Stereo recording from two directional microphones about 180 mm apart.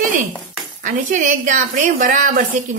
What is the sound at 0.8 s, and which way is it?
A woman's voice, 45° right (ahead or behind).